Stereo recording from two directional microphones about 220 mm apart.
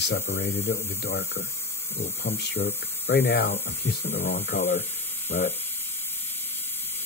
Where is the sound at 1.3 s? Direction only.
10° left (ahead or behind).